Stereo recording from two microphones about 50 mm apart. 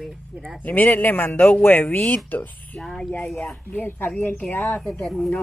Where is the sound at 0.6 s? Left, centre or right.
Left.